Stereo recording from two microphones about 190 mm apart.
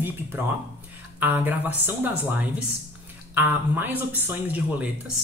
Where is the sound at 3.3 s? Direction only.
10° right (ahead or behind).